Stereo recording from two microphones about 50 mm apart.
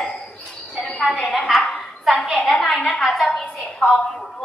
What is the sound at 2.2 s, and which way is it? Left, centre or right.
Speech, centre.